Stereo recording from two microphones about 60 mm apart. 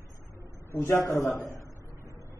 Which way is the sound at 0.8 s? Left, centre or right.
Left.